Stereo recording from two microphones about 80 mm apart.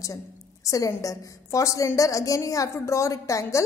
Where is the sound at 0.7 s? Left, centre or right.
Left.